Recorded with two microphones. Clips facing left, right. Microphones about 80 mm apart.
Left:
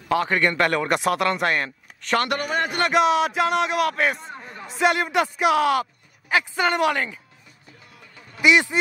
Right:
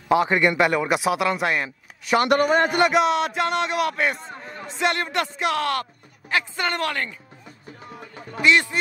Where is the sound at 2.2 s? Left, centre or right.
Right.